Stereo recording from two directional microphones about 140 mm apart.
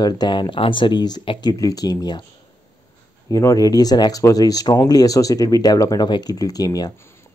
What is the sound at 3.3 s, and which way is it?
Speech, 20° left (ahead or behind).